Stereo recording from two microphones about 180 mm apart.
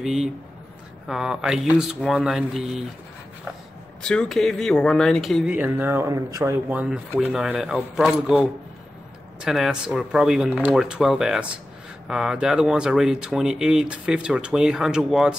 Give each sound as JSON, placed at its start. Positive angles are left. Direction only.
{"t": 0.0, "sound": "speech", "side_deg": 0}
{"t": 4.0, "sound": "speech", "side_deg": 5}